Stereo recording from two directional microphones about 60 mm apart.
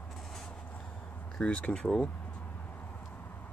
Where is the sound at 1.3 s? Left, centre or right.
Centre.